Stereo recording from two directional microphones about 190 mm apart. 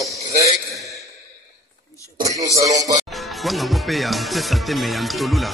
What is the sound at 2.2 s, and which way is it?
Music, 15° right (ahead or behind).